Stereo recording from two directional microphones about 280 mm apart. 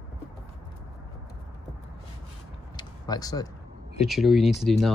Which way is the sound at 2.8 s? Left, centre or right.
Centre.